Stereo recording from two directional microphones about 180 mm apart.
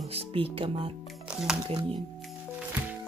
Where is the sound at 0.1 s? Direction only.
30° right (ahead or behind).